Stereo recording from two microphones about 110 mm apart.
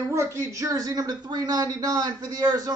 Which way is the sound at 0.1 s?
25° right (ahead or behind).